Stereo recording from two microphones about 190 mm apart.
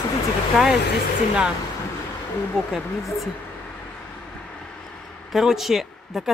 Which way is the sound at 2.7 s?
Centre (ahead or behind).